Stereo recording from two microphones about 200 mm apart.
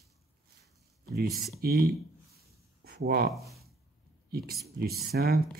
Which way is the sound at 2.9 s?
50° right (ahead or behind).